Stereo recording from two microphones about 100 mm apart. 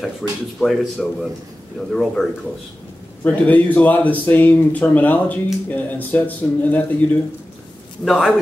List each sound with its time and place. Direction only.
0.2 s speech: 5° left (ahead or behind)
3.3 s speech: 15° left (ahead or behind)
8.0 s speech: centre (ahead or behind)